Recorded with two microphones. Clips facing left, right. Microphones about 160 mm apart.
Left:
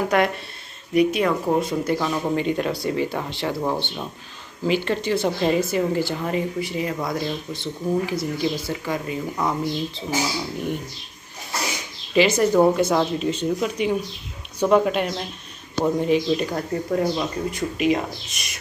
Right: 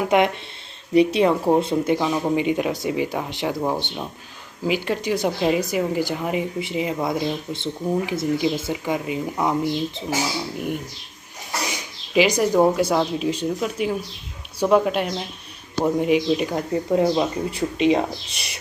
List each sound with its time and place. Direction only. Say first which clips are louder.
0.0 s speech: right 2 dB; 20° right (ahead or behind)
2.0 s speech: right 2 dB; 10° right (ahead or behind)
12.1 s speech: even; 10° right (ahead or behind)
17.5 s speech: left 1 dB; 30° right (ahead or behind)